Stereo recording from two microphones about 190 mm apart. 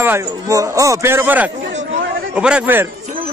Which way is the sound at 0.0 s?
15° right (ahead or behind).